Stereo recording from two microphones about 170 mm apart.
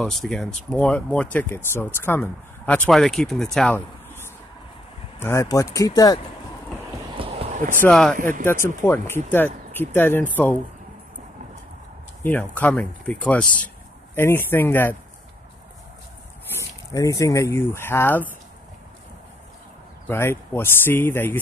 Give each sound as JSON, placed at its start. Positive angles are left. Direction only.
{"t": 0.0, "sound": "speech", "side_deg": 0}
{"t": 3.5, "sound": "a sound", "side_deg": 10}
{"t": 5.2, "sound": "speech", "side_deg": 15}
{"t": 7.2, "sound": "a sound", "side_deg": -35}
{"t": 7.8, "sound": "speech", "side_deg": 5}
{"t": 12.2, "sound": "speech", "side_deg": 10}
{"t": 16.5, "sound": "speech", "side_deg": 20}
{"t": 20.1, "sound": "speech", "side_deg": 15}